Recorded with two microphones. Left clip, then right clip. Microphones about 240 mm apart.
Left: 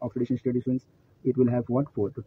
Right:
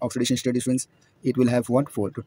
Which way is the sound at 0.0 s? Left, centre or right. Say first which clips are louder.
Right 4 dB; right.